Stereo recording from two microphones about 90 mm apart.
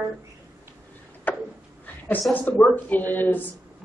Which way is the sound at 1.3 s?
20° left (ahead or behind).